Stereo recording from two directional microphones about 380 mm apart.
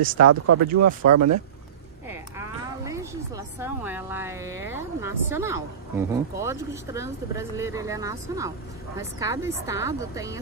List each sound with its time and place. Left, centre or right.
0.2 s speech: right
2.3 s a woman's voice: centre